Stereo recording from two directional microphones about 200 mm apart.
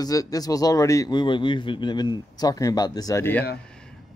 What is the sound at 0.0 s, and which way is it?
A man's voice, 15° left (ahead or behind).